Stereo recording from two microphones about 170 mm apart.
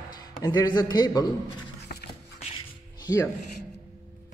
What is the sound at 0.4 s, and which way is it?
Speech, 25° left (ahead or behind).